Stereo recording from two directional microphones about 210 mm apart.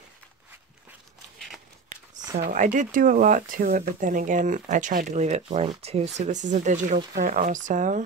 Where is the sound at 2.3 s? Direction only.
40° right (ahead or behind).